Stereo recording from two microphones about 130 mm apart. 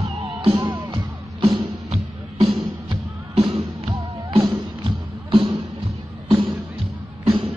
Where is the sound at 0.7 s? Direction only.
25° right (ahead or behind).